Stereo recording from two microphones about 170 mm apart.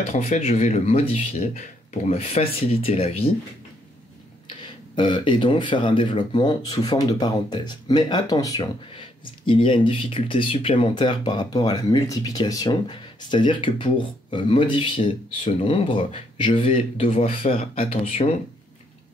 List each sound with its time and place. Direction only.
0.1 s speech: 40° left (ahead or behind)
4.6 s speech: 30° left (ahead or behind)